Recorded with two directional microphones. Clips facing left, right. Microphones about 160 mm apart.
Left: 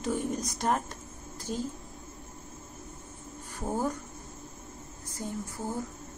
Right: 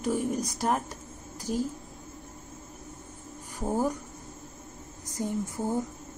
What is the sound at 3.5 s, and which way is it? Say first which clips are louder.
Speech: right 3 dB; 10° right (ahead or behind).